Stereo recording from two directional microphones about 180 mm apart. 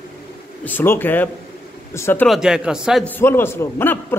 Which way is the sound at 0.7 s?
10° left (ahead or behind).